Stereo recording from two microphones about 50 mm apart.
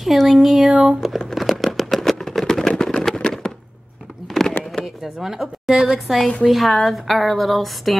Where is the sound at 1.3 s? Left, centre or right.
Centre.